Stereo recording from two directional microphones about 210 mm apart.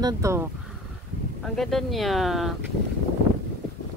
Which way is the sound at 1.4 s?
Centre (ahead or behind).